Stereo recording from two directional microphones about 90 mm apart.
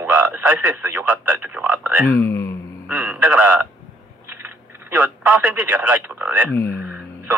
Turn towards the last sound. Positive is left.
turn(degrees=-20)  # may be behind; listen again after turning